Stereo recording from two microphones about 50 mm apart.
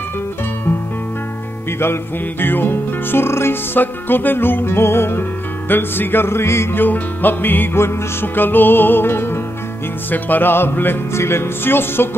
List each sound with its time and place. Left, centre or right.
2.4 s music: left
3.8 s music: left
6.8 s music: left
8.4 s music: left
10.1 s music: left
11.1 s music: left